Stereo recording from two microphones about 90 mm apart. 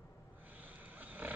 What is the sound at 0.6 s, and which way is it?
Vehicle, 20° right (ahead or behind).